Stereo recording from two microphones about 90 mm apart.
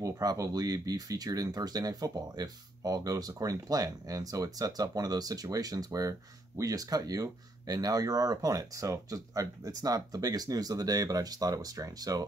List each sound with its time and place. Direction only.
0.0 s speech: 45° right (ahead or behind)